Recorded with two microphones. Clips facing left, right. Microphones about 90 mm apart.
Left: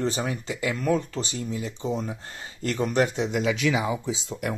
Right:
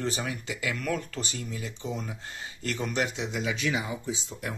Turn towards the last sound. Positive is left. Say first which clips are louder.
# left 5 dB
turn(degrees=90)